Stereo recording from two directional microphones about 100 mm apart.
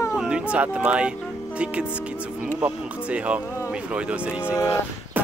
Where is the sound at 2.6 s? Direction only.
15° right (ahead or behind).